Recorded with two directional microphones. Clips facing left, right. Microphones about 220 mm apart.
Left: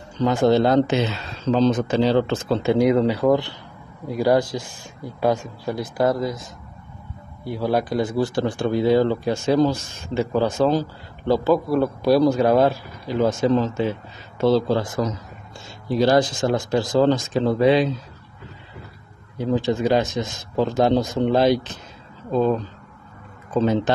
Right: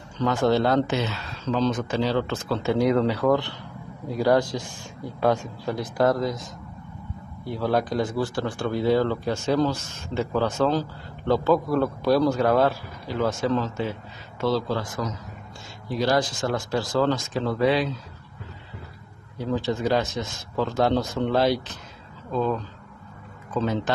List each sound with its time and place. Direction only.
0.2 s speech: 15° left (ahead or behind)
7.5 s speech: 10° left (ahead or behind)
19.3 s speech: 20° left (ahead or behind)